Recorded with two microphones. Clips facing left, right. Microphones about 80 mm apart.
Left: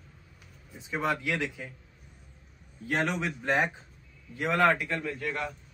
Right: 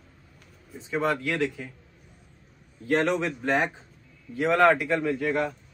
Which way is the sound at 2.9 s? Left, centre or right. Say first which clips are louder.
Right 5 dB; centre.